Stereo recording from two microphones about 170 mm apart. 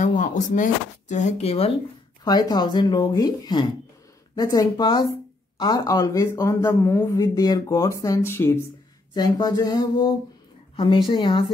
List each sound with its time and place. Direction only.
0.0 s speech: 45° left (ahead or behind)
2.2 s speech: 25° left (ahead or behind)
11.1 s speech: 30° left (ahead or behind)